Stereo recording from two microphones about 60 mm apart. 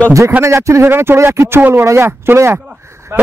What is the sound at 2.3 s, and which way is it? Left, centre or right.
Speech, right.